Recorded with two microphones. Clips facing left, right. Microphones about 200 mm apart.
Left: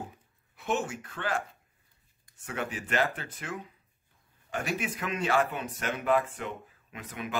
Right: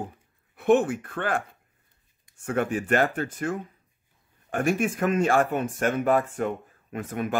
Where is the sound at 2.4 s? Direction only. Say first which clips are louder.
Right 9 dB; 50° right (ahead or behind).